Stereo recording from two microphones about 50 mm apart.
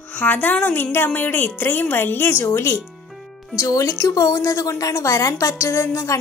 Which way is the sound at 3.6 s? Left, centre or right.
Left.